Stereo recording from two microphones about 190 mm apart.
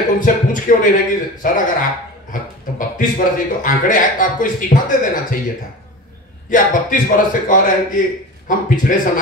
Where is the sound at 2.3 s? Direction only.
45° left (ahead or behind).